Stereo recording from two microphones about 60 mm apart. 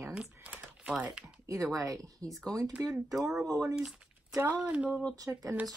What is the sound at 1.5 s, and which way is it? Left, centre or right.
Speech, right.